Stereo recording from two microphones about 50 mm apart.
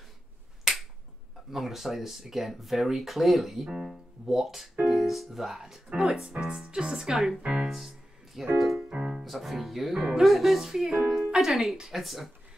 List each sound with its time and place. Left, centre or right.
0.7 s finger snapping: centre
1.5 s speech: centre
6.3 s speech: centre
8.5 s music: centre
8.8 s speech: right
9.2 s speech: centre